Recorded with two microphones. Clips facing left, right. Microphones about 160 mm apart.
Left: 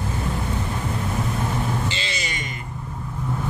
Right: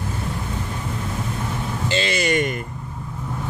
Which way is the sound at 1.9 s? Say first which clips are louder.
Right 10 dB; 55° right (ahead or behind).